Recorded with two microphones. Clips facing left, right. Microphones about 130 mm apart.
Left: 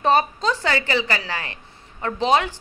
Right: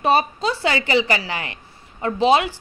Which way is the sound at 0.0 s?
10° right (ahead or behind).